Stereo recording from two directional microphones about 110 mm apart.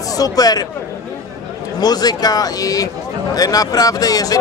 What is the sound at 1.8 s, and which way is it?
Speech, 35° left (ahead or behind).